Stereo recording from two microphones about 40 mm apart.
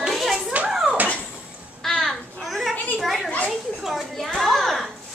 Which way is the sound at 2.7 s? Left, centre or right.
Left.